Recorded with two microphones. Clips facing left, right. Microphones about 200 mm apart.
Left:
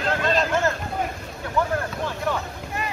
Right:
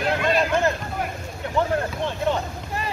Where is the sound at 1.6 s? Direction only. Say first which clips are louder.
Right 2 dB; 25° right (ahead or behind).